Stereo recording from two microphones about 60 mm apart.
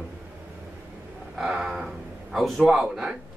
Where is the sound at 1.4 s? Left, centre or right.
Centre.